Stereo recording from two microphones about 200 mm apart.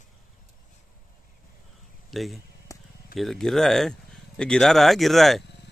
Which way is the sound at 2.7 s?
15° left (ahead or behind).